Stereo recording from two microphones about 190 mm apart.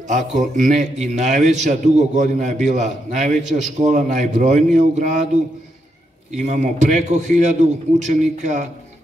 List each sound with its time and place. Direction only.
0.1 s a man's voice: 40° right (ahead or behind)